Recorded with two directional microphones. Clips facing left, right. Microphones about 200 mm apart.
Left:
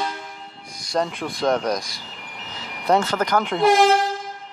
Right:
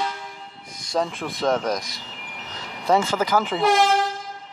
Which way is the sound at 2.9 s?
5° right (ahead or behind).